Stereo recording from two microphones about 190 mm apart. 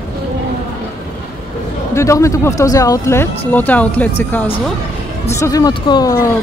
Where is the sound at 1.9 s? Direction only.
15° left (ahead or behind).